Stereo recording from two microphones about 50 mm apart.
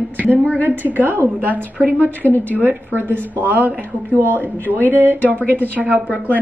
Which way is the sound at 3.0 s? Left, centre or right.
Right.